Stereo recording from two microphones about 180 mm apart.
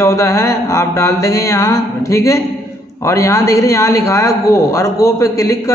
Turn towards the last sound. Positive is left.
turn(degrees=15)  # may be behind; listen again after turning